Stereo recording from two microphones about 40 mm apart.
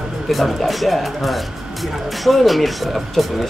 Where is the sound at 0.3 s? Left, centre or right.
Centre.